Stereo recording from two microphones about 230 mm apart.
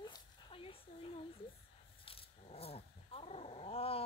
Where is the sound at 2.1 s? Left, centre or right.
Left.